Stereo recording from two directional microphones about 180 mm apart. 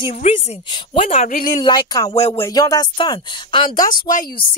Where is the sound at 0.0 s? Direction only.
35° left (ahead or behind).